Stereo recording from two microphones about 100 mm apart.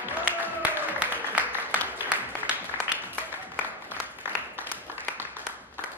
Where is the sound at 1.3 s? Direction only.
15° left (ahead or behind).